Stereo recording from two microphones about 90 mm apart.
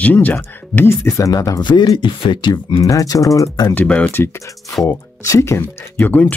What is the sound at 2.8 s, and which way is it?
Speech, 40° left (ahead or behind).